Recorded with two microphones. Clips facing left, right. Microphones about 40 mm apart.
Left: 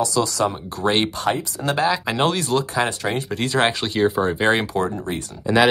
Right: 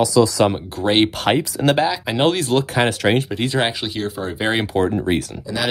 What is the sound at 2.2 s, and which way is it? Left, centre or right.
Speech, right.